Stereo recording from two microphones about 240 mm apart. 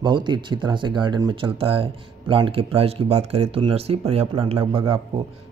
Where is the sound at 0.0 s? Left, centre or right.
Centre.